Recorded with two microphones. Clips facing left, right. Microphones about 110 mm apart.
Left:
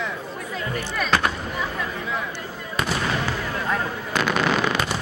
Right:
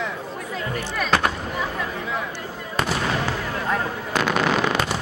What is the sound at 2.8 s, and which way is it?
Artillery fire, 40° right (ahead or behind).